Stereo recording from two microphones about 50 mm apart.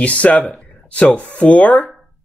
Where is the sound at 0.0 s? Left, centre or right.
Left.